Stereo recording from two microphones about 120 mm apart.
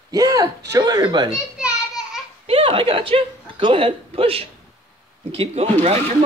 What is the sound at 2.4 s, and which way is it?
A woman's voice, 50° right (ahead or behind).